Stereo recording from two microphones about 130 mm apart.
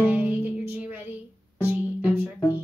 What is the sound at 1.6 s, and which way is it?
Music, 15° right (ahead or behind).